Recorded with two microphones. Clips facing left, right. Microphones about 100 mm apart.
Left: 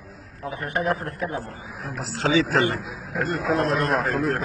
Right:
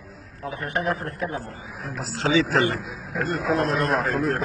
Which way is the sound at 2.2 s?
40° left (ahead or behind).